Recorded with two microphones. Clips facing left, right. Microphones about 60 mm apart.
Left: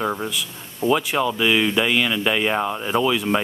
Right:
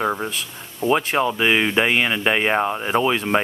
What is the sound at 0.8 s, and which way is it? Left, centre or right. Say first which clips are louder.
Speech: even; centre.